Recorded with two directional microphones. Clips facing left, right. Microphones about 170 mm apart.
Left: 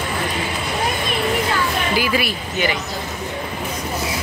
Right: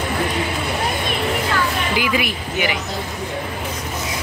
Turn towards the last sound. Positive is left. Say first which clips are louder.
# left 1 dB
turn(degrees=-15)  # may be behind; listen again after turning